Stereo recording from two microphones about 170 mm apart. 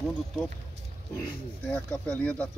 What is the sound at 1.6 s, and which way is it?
Speech, 10° left (ahead or behind).